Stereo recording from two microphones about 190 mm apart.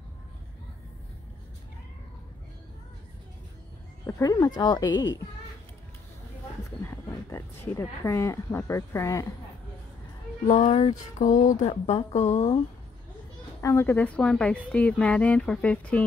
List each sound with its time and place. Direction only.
4.0 s speech: 15° left (ahead or behind)
6.9 s a sound: 15° left (ahead or behind)
7.7 s a woman's voice: 15° left (ahead or behind)
10.4 s speech: 35° left (ahead or behind)
13.6 s a woman's voice: 15° left (ahead or behind)